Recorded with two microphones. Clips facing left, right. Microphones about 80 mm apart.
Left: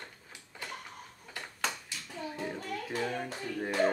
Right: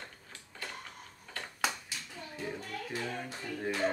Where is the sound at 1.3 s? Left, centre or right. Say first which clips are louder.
Right 1 dB; centre.